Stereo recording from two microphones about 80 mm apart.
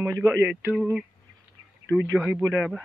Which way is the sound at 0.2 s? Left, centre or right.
Right.